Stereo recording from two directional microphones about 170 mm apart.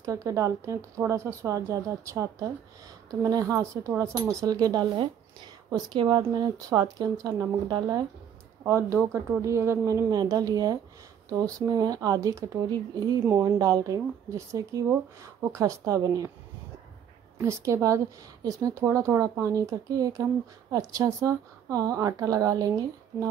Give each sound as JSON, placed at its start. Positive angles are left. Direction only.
{"t": 0.0, "sound": "speech", "side_deg": -20}
{"t": 17.4, "sound": "speech", "side_deg": -15}